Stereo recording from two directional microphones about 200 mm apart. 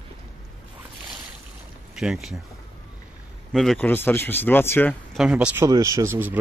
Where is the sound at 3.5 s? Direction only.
Centre (ahead or behind).